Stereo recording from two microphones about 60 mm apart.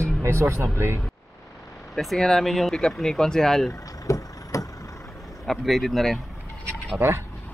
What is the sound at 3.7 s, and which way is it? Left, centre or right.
Vehicle, left.